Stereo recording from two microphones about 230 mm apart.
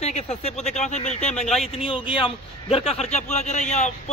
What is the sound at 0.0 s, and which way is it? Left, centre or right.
A man's voice, left.